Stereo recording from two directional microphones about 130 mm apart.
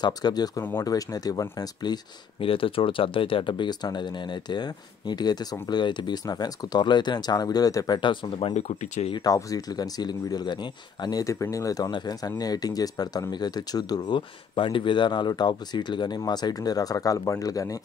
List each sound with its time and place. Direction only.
0.0 s speech: 30° left (ahead or behind)
2.4 s speech: 45° left (ahead or behind)
8.5 s speech: 60° left (ahead or behind)
9.1 s speech: 30° left (ahead or behind)